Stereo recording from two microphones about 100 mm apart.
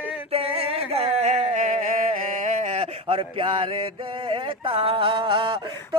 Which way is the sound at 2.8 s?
75° right (ahead or behind).